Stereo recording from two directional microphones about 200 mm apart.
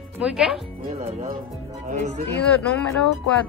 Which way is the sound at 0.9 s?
35° right (ahead or behind).